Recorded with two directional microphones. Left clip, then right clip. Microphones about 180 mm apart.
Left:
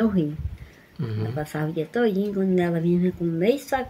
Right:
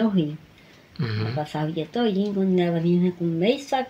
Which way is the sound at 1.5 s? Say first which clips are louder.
Left 1 dB; 20° left (ahead or behind).